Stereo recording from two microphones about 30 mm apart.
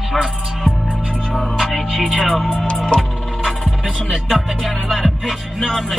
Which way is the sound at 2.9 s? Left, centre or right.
Left.